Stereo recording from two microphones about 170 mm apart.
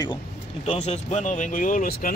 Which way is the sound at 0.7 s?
40° left (ahead or behind).